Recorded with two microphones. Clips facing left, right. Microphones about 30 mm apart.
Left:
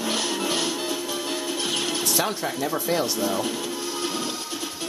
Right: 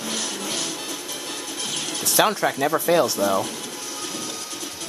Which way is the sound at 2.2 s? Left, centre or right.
Right.